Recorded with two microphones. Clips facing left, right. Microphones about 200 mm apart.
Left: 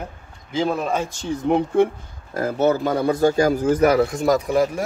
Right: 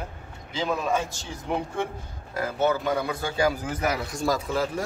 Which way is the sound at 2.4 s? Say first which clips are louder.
Left 6 dB; 45° left (ahead or behind).